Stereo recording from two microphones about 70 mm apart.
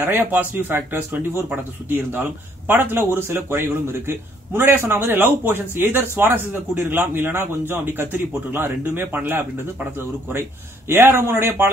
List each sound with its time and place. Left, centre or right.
0.0 s a man's voice: right
10.9 s a man's voice: right